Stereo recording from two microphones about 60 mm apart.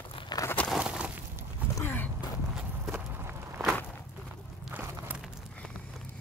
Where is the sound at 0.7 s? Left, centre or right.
Centre.